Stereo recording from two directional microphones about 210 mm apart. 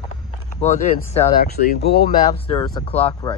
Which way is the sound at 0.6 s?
35° left (ahead or behind).